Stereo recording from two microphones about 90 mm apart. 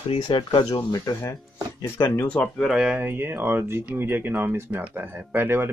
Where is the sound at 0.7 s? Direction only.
45° left (ahead or behind).